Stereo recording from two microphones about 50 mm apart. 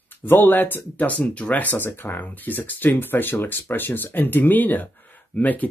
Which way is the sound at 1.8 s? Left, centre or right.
Left.